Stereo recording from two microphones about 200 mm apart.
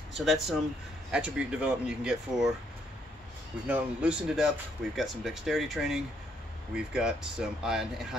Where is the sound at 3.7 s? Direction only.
5° right (ahead or behind).